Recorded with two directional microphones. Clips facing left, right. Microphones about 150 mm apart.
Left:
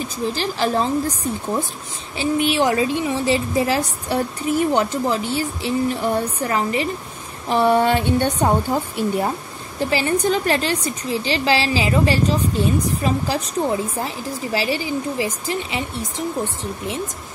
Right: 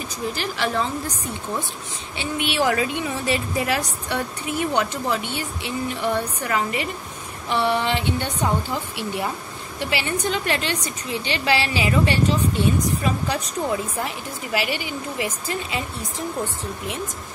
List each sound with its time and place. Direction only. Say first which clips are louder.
0.3 s a woman's voice: left 4 dB; 35° left (ahead or behind)
2.1 s a woman's voice: left 7 dB; 35° left (ahead or behind)
2.6 s a woman's voice: left 3 dB; 25° left (ahead or behind)